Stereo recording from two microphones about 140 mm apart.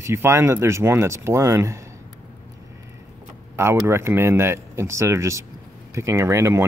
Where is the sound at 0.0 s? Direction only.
20° right (ahead or behind).